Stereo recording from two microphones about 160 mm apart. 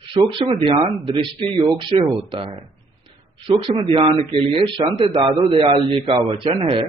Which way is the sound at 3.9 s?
35° right (ahead or behind).